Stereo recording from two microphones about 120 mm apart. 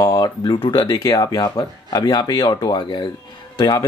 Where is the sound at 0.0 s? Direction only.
35° left (ahead or behind).